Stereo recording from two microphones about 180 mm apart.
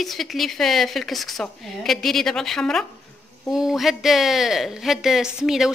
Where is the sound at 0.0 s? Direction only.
Centre (ahead or behind).